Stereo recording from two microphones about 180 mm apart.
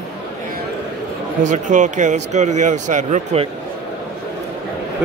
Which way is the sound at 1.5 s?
45° right (ahead or behind).